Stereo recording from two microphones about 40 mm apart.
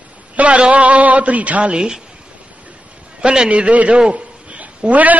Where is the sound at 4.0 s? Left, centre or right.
Right.